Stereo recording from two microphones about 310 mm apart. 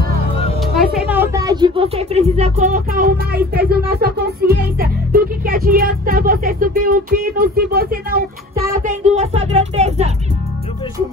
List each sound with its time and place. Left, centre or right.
0.6 s speech: centre; by 10.1 s right